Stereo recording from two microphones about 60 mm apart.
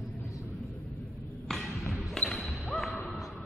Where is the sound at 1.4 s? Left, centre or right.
Centre.